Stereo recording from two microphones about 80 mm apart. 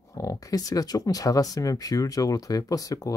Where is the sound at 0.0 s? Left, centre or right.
Left.